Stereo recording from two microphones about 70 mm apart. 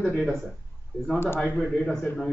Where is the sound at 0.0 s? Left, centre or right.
Centre.